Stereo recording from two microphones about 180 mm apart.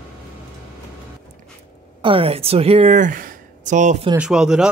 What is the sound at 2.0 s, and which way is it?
A woman's voice, 30° right (ahead or behind).